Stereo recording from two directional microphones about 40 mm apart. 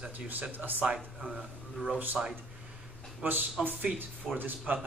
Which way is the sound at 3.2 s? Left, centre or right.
Right.